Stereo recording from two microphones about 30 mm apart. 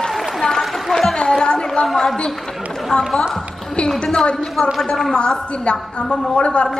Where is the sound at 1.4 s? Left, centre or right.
Left.